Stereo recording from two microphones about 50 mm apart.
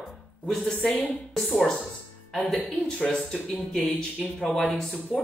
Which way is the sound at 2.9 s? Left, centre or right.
Centre.